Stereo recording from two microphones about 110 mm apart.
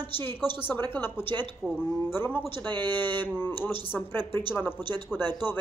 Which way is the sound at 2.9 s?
20° left (ahead or behind).